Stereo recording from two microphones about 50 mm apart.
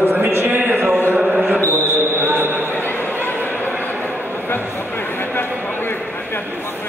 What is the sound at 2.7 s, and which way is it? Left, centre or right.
Chatter, left.